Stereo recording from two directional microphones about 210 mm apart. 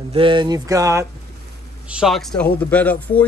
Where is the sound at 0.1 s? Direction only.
25° right (ahead or behind).